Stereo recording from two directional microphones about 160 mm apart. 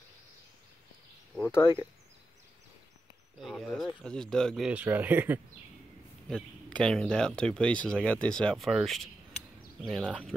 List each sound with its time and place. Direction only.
1.5 s speech: 25° left (ahead or behind)
3.3 s speech: centre (ahead or behind)
6.2 s speech: 5° left (ahead or behind)